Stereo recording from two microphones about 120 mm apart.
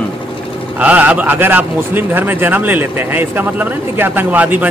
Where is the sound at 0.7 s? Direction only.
10° right (ahead or behind).